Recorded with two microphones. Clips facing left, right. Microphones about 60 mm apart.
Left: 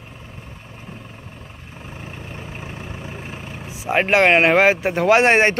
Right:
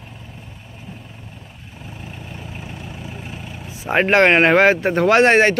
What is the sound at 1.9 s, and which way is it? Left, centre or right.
Vehicle, left.